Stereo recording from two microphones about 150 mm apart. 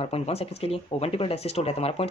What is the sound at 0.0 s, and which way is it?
Speech, 45° left (ahead or behind).